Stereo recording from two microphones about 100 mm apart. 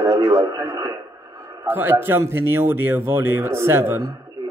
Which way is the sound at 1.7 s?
20° right (ahead or behind).